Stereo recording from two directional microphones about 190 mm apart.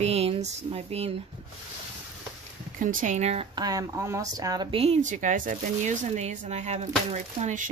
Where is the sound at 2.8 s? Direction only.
45° right (ahead or behind).